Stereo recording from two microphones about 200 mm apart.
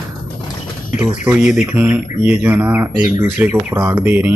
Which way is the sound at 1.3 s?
5° right (ahead or behind).